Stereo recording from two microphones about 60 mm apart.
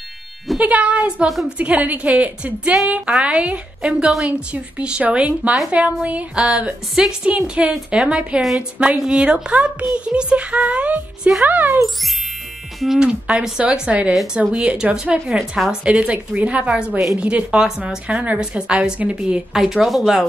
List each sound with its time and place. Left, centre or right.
0.6 s a woman's voice: right
11.4 s a child's voice: right
12.8 s a woman's voice: centre
13.3 s a woman's voice: centre
15.3 s speech: centre
15.7 s a woman's voice: centre
19.5 s speech: centre